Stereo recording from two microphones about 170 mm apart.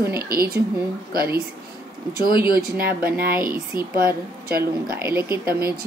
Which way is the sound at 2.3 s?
60° right (ahead or behind).